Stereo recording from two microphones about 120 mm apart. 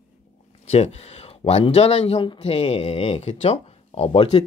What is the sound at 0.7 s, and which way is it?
Speech, 65° left (ahead or behind).